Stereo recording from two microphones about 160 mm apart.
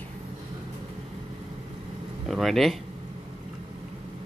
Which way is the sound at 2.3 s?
Centre (ahead or behind).